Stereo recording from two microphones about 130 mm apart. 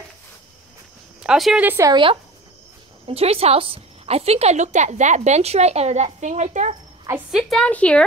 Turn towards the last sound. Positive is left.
turn(degrees=10)  # may be behind; listen again after turning